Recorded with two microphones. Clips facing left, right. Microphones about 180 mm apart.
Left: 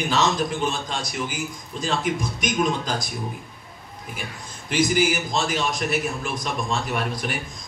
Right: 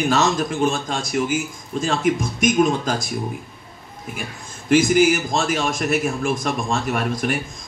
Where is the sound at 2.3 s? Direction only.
50° right (ahead or behind).